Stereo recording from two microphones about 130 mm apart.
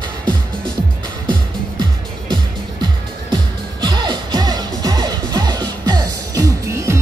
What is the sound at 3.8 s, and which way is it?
Music, 35° right (ahead or behind).